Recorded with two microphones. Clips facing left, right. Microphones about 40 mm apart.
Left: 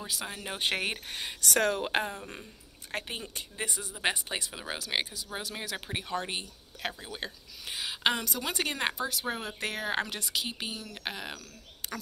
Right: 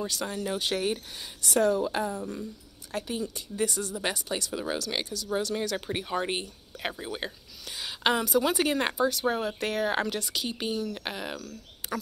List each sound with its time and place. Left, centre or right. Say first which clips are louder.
0.0 s speech: right 5 dB; centre
0.4 s speech: right 2 dB; left
3.6 s speech: right 2 dB; centre
6.0 s speech: right 4 dB; centre
7.8 s speech: right 3 dB; centre